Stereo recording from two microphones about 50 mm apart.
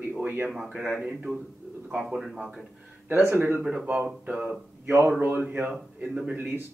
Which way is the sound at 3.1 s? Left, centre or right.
Right.